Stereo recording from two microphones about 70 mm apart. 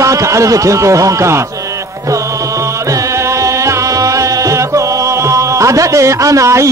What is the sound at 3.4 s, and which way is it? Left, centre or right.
Music, right.